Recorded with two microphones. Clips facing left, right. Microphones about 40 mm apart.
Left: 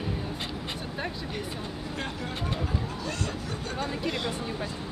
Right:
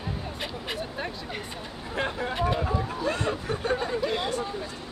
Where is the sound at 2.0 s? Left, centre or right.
Right.